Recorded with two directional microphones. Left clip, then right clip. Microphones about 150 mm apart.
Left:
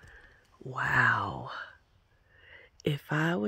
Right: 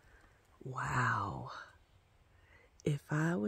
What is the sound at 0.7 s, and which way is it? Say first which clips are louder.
Speech: left 9 dB; 15° left (ahead or behind).